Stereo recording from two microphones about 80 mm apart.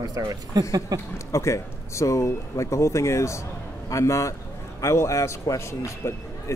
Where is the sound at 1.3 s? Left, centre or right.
Left.